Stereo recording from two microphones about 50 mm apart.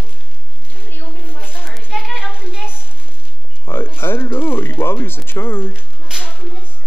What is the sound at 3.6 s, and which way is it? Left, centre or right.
Speech, left.